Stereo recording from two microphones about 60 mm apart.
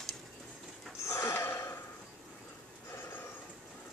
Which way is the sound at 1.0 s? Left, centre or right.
Left.